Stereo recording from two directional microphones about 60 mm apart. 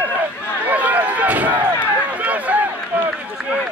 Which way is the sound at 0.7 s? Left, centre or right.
Right.